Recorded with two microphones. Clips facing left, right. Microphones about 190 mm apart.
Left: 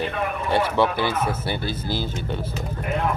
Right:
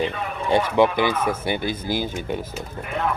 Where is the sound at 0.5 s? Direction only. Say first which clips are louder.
Right 3 dB; 15° right (ahead or behind).